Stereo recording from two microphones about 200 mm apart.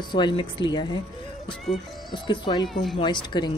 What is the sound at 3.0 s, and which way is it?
Speech, 20° left (ahead or behind).